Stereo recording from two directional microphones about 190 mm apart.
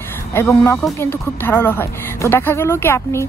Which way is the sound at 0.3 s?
15° left (ahead or behind).